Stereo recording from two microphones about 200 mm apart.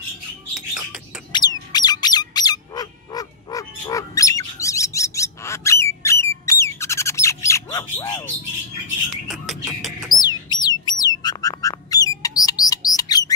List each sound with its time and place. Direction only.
0.7 s bird: 5° right (ahead or behind)
1.3 s bird: 20° left (ahead or behind)
6.0 s a sound: 15° left (ahead or behind)
6.6 s bird: 15° left (ahead or behind)
9.3 s music: centre (ahead or behind)
10.1 s squawk: 20° left (ahead or behind)
12.2 s bird: 20° left (ahead or behind)